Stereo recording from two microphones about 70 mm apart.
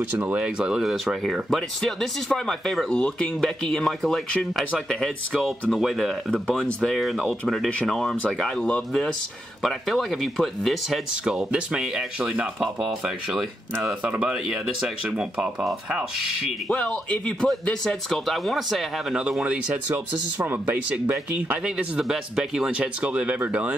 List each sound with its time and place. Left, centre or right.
0.4 s speech: centre
9.6 s speech: centre
11.2 s speech: centre
14.0 s speech: right
14.5 s speech: centre
16.6 s speech: centre
19.1 s speech: centre